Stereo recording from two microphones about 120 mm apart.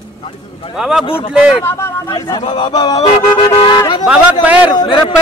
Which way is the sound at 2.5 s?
40° left (ahead or behind).